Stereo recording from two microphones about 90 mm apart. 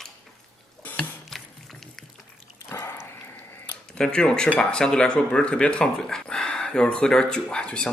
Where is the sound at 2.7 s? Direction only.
30° left (ahead or behind).